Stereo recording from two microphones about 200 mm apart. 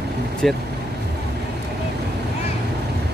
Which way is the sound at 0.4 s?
Centre (ahead or behind).